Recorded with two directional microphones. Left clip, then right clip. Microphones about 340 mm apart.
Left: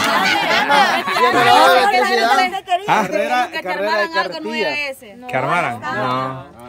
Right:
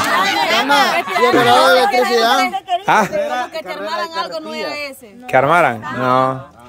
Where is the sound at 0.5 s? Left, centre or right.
Right.